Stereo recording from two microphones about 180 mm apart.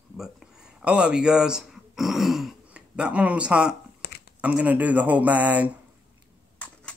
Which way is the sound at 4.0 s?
65° left (ahead or behind).